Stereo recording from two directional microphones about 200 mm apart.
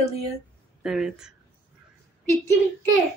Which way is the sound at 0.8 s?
Centre (ahead or behind).